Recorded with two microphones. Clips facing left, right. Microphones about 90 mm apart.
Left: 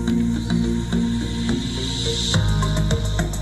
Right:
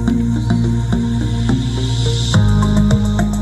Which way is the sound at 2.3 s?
40° right (ahead or behind).